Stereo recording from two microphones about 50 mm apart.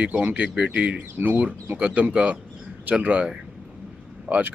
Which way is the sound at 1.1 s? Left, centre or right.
Right.